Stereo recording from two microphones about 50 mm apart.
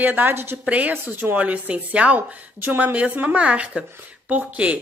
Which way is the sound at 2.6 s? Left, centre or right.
Right.